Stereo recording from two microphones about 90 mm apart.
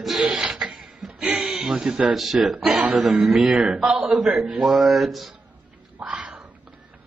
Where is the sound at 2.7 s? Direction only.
15° right (ahead or behind).